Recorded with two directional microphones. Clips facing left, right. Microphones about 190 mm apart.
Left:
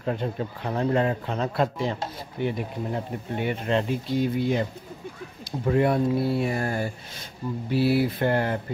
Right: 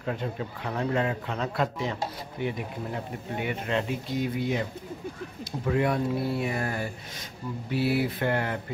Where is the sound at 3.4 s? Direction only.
35° left (ahead or behind).